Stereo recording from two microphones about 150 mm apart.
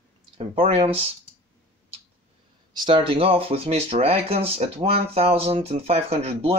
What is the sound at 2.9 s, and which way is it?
Speech, 40° right (ahead or behind).